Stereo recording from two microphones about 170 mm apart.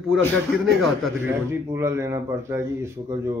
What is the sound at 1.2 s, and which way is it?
Speech, 15° right (ahead or behind).